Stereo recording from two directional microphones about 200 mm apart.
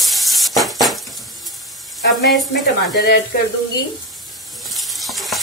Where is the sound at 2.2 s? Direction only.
55° left (ahead or behind).